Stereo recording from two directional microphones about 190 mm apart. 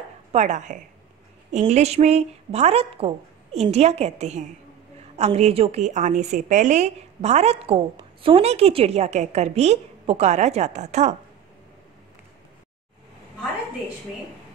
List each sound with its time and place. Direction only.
0.3 s a woman's voice: 40° right (ahead or behind)